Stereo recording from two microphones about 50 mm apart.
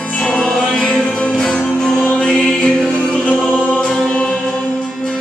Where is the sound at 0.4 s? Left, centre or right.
Centre.